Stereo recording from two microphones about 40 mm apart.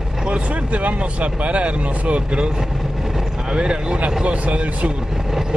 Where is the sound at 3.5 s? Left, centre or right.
Right.